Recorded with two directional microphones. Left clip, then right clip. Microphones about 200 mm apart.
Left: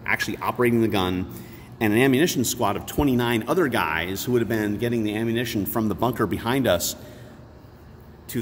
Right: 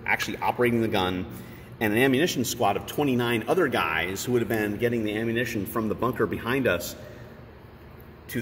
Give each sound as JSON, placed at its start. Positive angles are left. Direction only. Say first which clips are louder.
{"t": 0.0, "sound": "speech", "louder": "left 1 dB", "side_deg": 45}